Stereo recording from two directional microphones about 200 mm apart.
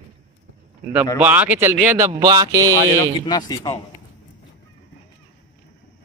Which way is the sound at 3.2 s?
20° left (ahead or behind).